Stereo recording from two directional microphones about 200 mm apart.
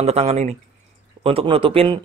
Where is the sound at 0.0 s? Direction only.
30° right (ahead or behind).